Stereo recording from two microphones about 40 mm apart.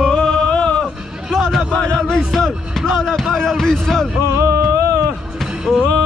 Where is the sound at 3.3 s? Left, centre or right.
Centre.